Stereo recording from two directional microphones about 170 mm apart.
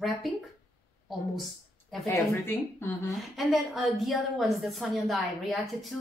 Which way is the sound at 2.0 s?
15° left (ahead or behind).